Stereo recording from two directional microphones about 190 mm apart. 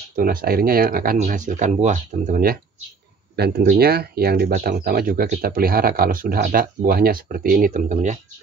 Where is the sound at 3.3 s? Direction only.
55° right (ahead or behind).